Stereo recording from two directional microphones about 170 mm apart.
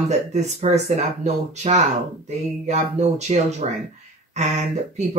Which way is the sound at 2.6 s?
40° right (ahead or behind).